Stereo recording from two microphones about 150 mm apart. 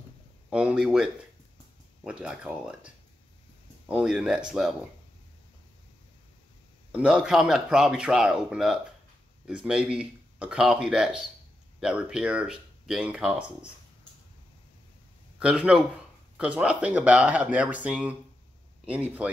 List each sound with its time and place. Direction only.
0.5 s speech: 5° right (ahead or behind)
3.9 s speech: 5° right (ahead or behind)
6.9 s speech: 5° right (ahead or behind)
15.3 s speech: 10° right (ahead or behind)